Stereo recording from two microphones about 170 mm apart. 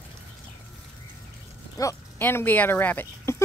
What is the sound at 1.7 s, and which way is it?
Livestock, 20° left (ahead or behind).